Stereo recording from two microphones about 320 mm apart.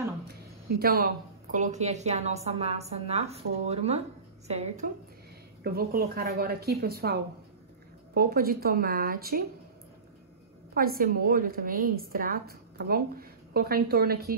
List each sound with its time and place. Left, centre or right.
0.7 s a woman's voice: right
10.7 s a woman's voice: right